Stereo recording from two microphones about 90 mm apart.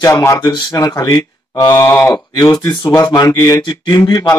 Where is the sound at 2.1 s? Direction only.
40° left (ahead or behind).